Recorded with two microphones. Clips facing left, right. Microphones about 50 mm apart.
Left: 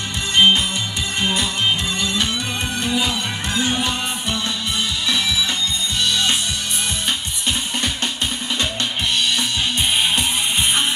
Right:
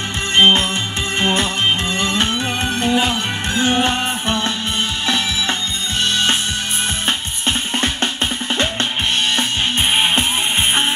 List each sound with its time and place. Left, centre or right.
0.4 s music: right
2.9 s music: right
5.9 s music: right
9.2 s music: right